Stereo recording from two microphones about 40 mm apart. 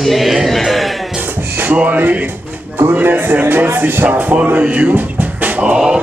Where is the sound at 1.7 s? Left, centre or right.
Right.